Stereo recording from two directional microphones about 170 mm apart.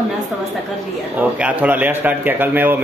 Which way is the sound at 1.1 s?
10° right (ahead or behind).